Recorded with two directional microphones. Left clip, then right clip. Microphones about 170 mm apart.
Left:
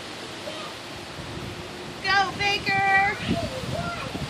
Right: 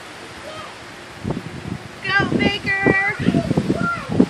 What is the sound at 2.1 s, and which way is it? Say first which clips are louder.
Vehicle: right 3 dB; 60° left (ahead or behind).